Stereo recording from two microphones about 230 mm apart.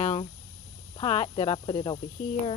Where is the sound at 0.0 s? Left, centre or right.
Left.